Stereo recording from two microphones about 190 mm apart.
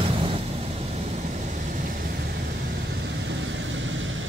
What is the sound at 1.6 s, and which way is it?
Vehicle, 45° right (ahead or behind).